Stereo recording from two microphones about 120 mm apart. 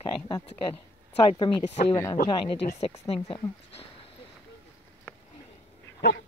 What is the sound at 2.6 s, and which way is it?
Speech, 60° left (ahead or behind).